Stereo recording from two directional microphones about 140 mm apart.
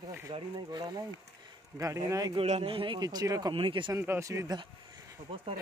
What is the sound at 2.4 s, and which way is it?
A man's voice, 45° right (ahead or behind).